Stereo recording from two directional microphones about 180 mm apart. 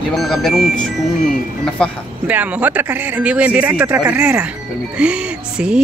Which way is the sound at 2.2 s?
10° right (ahead or behind).